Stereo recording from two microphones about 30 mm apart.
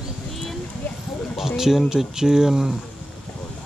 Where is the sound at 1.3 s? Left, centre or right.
Centre.